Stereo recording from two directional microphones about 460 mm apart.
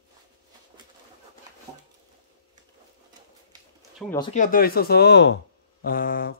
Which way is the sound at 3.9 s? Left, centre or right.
Centre.